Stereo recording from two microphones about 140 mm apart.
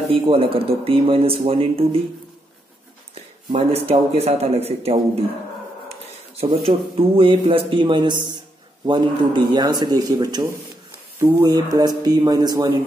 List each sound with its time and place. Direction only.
0.1 s speech: 40° right (ahead or behind)
3.5 s speech: 45° right (ahead or behind)
6.6 s a man's voice: 40° right (ahead or behind)